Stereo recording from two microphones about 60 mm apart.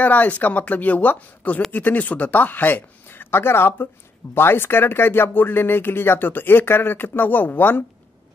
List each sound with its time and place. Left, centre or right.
0.0 s speech: left